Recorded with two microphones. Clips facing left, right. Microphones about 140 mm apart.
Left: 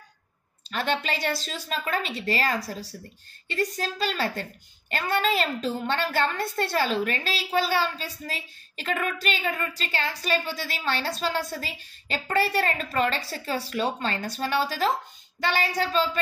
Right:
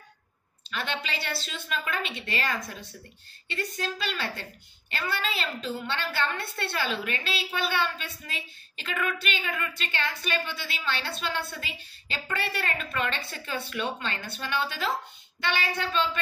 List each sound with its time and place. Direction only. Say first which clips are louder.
0.7 s a woman's voice: left 6 dB; 40° left (ahead or behind)